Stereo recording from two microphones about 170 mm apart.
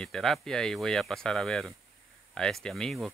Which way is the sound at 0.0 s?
5° left (ahead or behind).